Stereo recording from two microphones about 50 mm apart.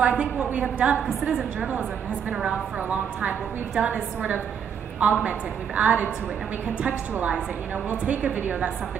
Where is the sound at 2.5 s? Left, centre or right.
Right.